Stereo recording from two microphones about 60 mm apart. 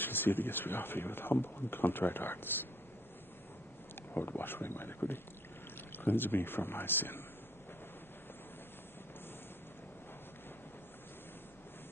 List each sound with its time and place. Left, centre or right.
0.0 s speech: left
4.1 s speech: left